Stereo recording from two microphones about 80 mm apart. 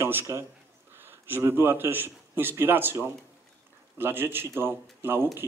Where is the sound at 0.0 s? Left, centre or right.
Right.